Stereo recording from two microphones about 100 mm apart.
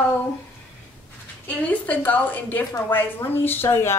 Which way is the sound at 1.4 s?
15° left (ahead or behind).